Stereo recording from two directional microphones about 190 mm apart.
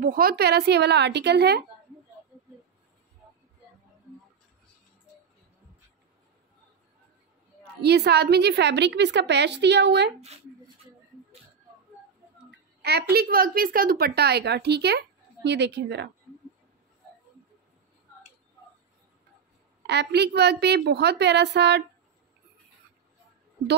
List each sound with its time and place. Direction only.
0.0 s a woman's voice: 50° right (ahead or behind)
7.8 s a woman's voice: 60° right (ahead or behind)
12.4 s a sound: 60° right (ahead or behind)
13.1 s a woman's voice: 50° right (ahead or behind)
19.9 s a woman's voice: 60° right (ahead or behind)